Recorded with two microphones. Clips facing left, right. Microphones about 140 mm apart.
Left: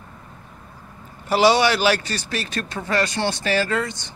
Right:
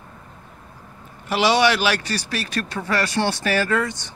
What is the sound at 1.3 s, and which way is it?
Speech, 35° left (ahead or behind).